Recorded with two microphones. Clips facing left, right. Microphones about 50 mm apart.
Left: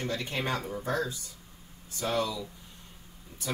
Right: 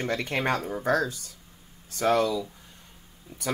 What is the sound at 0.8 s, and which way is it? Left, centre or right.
Speech, right.